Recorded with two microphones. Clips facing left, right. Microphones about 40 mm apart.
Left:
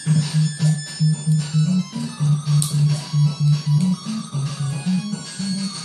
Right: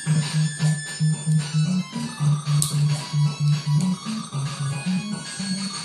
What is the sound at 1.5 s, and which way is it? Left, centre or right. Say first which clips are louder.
Music: left 4 dB; centre.